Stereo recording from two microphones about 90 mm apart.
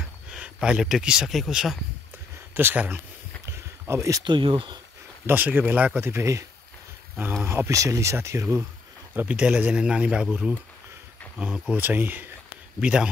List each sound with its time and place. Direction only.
0.3 s speech: 10° right (ahead or behind)
2.5 s speech: 20° right (ahead or behind)
3.4 s a sound: 30° right (ahead or behind)
4.2 s speech: 70° right (ahead or behind)
5.2 s speech: 20° right (ahead or behind)
7.4 s speech: 30° right (ahead or behind)
9.1 s speech: 20° right (ahead or behind)
11.3 s speech: 10° right (ahead or behind)